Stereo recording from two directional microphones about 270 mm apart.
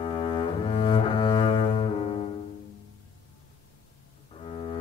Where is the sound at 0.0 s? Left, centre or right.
Centre.